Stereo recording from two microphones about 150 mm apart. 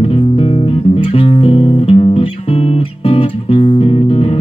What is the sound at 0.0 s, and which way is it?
Music, 40° left (ahead or behind).